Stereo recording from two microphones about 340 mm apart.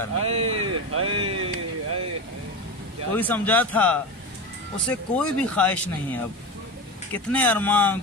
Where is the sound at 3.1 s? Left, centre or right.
Centre.